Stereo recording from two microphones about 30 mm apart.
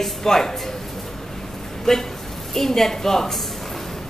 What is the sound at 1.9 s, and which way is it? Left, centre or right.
A woman's voice, left.